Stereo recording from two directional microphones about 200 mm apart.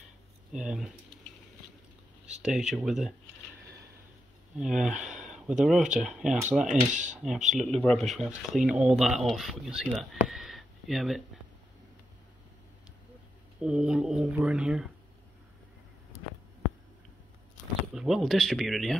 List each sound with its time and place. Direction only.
0.5 s speech: 5° right (ahead or behind)
2.2 s speech: 5° right (ahead or behind)
4.6 s speech: centre (ahead or behind)
6.7 s speech: 40° right (ahead or behind)
7.2 s speech: 5° right (ahead or behind)
10.2 s a sound: centre (ahead or behind)
13.6 s speech: 5° right (ahead or behind)
17.9 s speech: centre (ahead or behind)